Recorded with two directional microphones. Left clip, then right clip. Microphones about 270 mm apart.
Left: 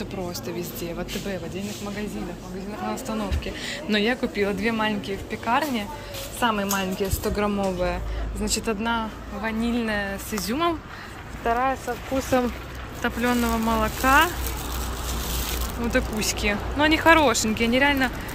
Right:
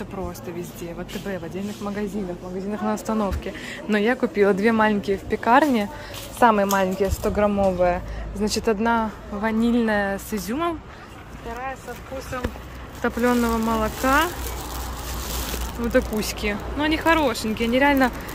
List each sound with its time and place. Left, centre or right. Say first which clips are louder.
0.6 s speech: left 2 dB; centre
2.9 s a woman's voice: right 6 dB; right
13.0 s speech: right 3 dB; centre
15.9 s speech: right 3 dB; centre